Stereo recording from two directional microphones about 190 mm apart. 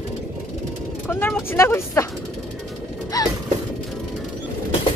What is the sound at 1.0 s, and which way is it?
Speech, 10° left (ahead or behind).